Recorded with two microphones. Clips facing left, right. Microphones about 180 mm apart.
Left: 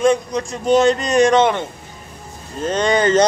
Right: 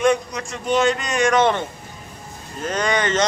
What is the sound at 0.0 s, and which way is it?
Speech, 30° left (ahead or behind).